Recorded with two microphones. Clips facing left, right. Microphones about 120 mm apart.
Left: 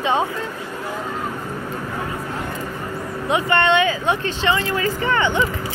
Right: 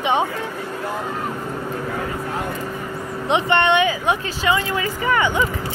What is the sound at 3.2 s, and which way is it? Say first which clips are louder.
Speech: right 1 dB; 25° right (ahead or behind).